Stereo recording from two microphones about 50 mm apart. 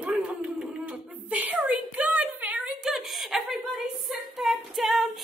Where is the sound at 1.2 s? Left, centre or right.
Right.